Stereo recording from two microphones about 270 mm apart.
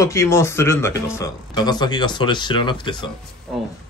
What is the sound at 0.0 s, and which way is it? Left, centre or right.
Speech, centre.